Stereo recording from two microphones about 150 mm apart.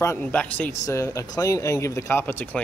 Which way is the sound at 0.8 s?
25° left (ahead or behind).